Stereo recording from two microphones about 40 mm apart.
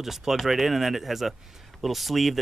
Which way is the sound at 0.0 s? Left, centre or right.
Centre.